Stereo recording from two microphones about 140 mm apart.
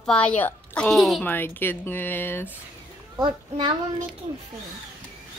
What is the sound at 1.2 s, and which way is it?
Speech, 15° left (ahead or behind).